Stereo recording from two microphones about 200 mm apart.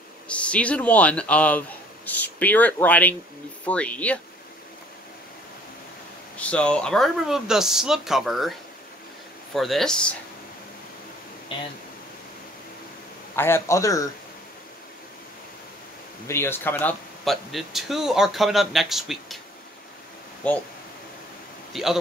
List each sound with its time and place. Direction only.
0.3 s speech: 5° left (ahead or behind)
6.3 s speech: 5° left (ahead or behind)
11.5 s speech: 25° left (ahead or behind)
13.4 s speech: 15° left (ahead or behind)
16.3 s speech: 10° left (ahead or behind)
21.7 s speech: centre (ahead or behind)